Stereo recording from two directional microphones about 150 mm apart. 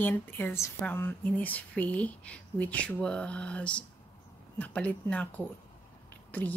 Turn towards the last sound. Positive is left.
turn(degrees=10)  # may be behind; listen again after turning